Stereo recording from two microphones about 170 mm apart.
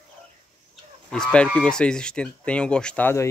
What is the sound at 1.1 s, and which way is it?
Speech, 5° left (ahead or behind).